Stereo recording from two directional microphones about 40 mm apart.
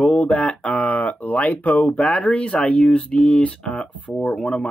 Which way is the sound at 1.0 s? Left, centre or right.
Left.